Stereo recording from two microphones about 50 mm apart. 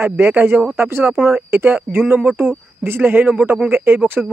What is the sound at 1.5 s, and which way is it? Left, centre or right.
Speech, right.